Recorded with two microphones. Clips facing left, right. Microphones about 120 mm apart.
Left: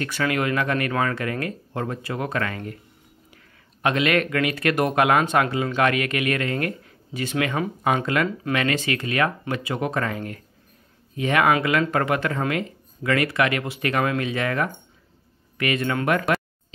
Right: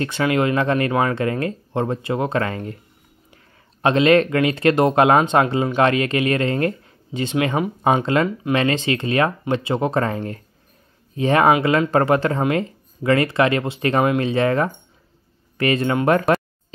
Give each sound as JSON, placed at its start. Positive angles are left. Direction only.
{"t": 0.0, "sound": "speech", "side_deg": -25}
{"t": 3.8, "sound": "speech", "side_deg": -30}